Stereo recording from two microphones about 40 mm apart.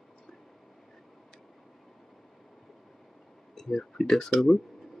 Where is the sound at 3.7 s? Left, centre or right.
Centre.